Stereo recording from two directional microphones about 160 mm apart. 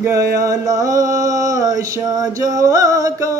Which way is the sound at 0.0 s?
20° right (ahead or behind).